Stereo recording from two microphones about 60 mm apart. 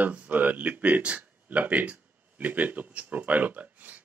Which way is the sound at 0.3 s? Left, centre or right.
Right.